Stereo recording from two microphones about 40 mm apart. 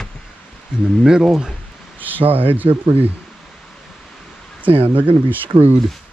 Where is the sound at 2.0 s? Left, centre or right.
Right.